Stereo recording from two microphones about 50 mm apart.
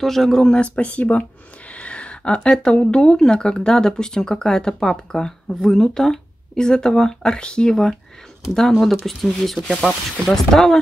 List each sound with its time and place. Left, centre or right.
0.0 s speech: centre
0.5 s speech: left